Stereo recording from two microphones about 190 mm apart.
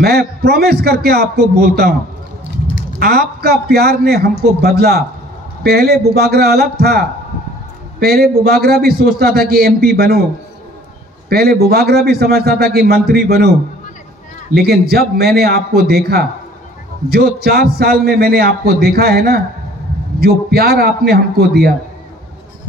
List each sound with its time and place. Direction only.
0.0 s a man's voice: 55° right (ahead or behind)
3.0 s a man's voice: 55° right (ahead or behind)
11.2 s a man's voice: 55° right (ahead or behind)